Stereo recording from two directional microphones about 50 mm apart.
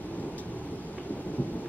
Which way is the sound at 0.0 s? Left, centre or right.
Left.